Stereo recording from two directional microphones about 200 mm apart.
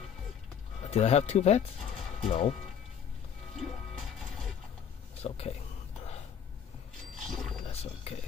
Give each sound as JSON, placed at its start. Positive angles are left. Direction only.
{"t": 0.8, "sound": "speech", "side_deg": 30}
{"t": 3.5, "sound": "smash", "side_deg": 0}
{"t": 5.2, "sound": "speech", "side_deg": 30}
{"t": 7.2, "sound": "wild animals", "side_deg": 0}
{"t": 7.6, "sound": "wild animals", "side_deg": 30}